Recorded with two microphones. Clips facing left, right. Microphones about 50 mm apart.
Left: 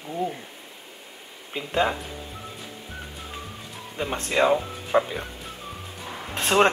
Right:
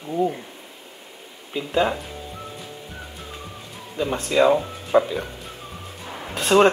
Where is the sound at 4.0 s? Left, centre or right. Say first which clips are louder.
Right 4 dB; left.